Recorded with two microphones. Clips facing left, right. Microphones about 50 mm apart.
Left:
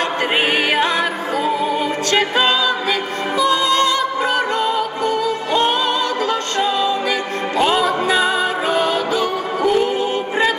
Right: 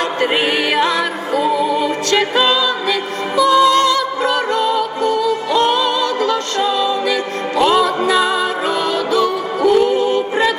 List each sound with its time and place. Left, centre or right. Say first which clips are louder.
1.3 s music: right 5 dB; left